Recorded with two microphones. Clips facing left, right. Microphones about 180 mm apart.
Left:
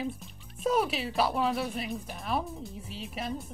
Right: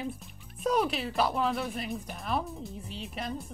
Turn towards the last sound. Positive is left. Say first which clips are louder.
# left 1 dB
turn(degrees=5)  # may be behind; listen again after turning